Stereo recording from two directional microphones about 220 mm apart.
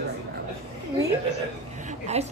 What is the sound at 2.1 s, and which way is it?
Speech, 30° right (ahead or behind).